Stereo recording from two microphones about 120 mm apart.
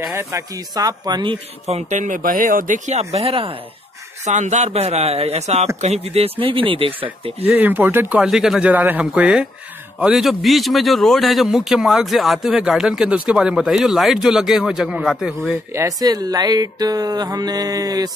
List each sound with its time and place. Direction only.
0.2 s speech: 30° right (ahead or behind); by 1.8 s 45° right (ahead or behind)
1.8 s speech: 85° right; by 3.5 s 55° right (ahead or behind)
4.3 s speech: 75° right (ahead or behind); by 7.3 s 50° right (ahead or behind)
7.5 s a man's voice: 15° right (ahead or behind)
15.7 s speech: 30° right (ahead or behind)